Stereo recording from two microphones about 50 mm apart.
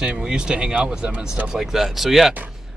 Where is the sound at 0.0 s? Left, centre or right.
Centre.